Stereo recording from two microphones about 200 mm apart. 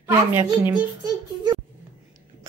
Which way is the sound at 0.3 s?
10° right (ahead or behind).